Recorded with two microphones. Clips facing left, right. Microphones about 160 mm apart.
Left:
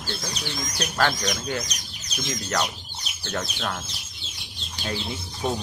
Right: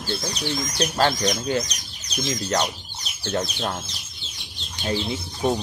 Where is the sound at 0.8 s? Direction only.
30° right (ahead or behind).